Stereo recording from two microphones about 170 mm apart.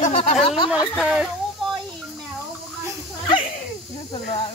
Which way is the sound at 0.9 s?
5° right (ahead or behind).